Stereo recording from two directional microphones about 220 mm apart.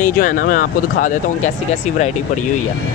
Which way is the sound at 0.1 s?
40° left (ahead or behind).